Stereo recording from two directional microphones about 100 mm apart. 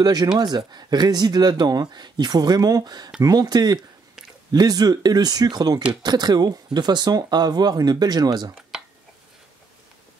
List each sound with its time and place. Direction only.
0.0 s speech: 40° right (ahead or behind)